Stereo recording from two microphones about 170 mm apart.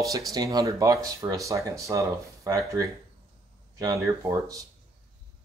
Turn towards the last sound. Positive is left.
turn(degrees=-20)  # may be behind; listen again after turning